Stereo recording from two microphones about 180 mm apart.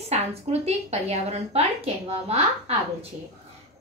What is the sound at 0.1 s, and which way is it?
A woman's voice, 35° right (ahead or behind).